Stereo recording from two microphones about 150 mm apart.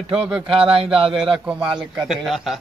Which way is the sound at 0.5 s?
40° right (ahead or behind).